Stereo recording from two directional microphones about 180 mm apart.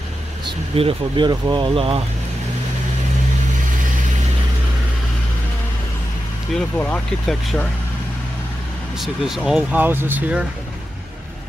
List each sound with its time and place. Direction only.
0.5 s speech: 30° right (ahead or behind)
6.5 s speech: 5° left (ahead or behind)
8.9 s speech: centre (ahead or behind)